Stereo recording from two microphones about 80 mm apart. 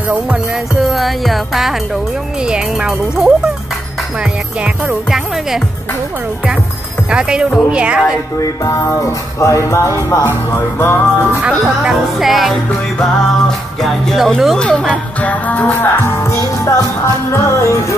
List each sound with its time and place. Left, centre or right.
0.7 s speech: centre
7.1 s speech: centre
8.4 s music: left
10.2 s music: left
11.4 s speech: centre
13.8 s speech: centre
14.6 s music: centre; by 17.7 s left